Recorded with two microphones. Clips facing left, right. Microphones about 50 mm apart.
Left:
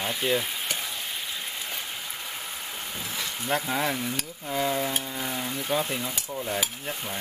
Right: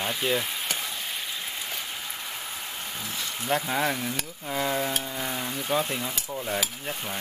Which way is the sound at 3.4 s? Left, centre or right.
Centre.